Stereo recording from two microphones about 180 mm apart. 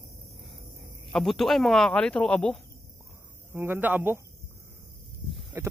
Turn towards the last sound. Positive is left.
turn(degrees=-15)  # may be behind; listen again after turning